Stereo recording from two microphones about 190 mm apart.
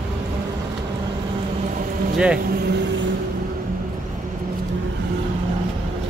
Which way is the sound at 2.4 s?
55° right (ahead or behind).